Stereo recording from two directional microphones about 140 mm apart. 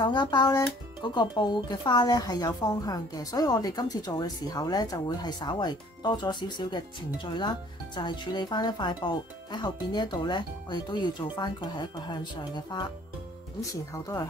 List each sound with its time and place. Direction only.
0.0 s speech: 30° left (ahead or behind)